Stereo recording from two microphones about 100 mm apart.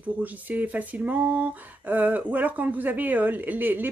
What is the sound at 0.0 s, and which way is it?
Speech, 15° right (ahead or behind).